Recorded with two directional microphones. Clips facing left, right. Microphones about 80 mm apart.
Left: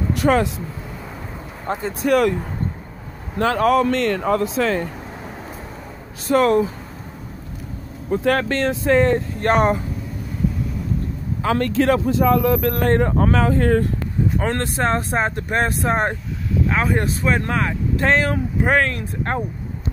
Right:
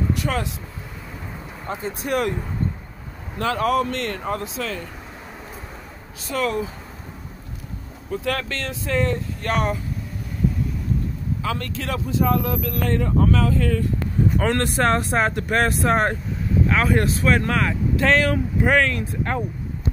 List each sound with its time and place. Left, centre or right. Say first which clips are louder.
0.1 s speech: left 7 dB; left
1.7 s speech: left 5 dB; left
2.0 s speech: left 7 dB; left
3.3 s speech: left 4 dB; left
4.6 s speech: left 9 dB; left
6.2 s speech: left 8 dB; left
8.1 s speech: left 7 dB; left
11.4 s speech: left 12 dB; left
15.0 s speech: even; left